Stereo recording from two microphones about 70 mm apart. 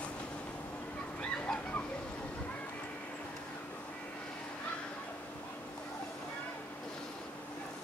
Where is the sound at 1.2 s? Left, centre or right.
Centre.